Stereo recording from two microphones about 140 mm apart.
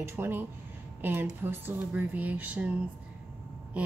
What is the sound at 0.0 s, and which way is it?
Speech, 15° right (ahead or behind).